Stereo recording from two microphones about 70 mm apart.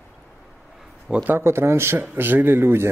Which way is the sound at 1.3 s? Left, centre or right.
Right.